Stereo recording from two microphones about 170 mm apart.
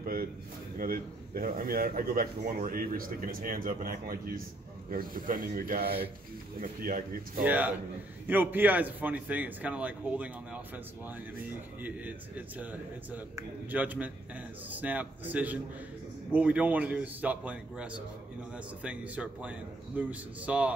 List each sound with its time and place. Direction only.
0.0 s a sound: 60° right (ahead or behind)
0.7 s speech: 60° right (ahead or behind)
7.4 s a man's voice: 10° right (ahead or behind)
11.8 s a man's voice: 10° right (ahead or behind)